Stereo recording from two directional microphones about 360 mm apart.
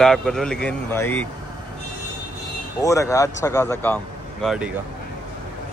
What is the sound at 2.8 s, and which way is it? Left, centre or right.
Speech, centre.